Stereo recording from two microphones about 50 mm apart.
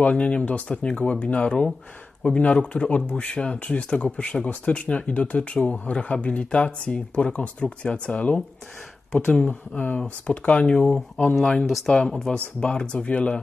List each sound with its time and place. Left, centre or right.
0.0 s speech: left
9.5 s speech: left; by 12.0 s centre
12.0 s speech: centre